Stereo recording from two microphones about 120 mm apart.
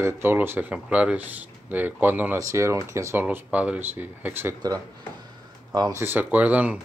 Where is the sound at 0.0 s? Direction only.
20° right (ahead or behind).